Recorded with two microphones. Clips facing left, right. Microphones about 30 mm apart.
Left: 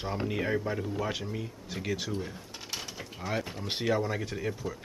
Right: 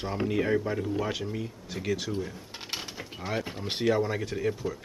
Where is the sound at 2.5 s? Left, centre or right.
Right.